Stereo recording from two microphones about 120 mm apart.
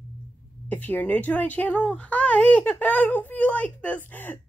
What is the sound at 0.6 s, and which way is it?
Speech, 15° left (ahead or behind).